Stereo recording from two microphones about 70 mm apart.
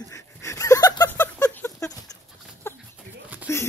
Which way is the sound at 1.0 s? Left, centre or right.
Left.